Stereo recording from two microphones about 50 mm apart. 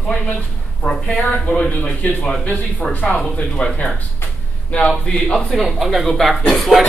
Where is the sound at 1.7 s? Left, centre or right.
Left.